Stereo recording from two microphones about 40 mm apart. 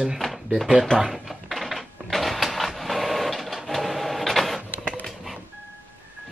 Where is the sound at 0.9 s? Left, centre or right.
Centre.